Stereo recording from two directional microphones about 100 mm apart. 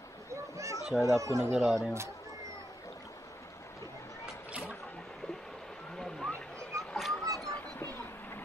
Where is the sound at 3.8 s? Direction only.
30° left (ahead or behind).